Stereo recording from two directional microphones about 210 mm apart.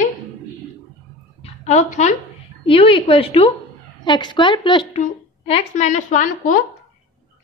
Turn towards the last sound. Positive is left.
turn(degrees=35)  # may be behind; listen again after turning